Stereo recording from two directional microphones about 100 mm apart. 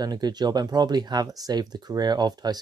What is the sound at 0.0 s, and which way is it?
Speech, 40° right (ahead or behind).